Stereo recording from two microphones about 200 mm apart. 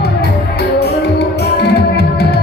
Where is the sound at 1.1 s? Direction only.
50° left (ahead or behind).